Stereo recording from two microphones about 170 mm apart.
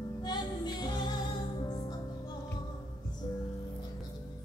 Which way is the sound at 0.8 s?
25° left (ahead or behind).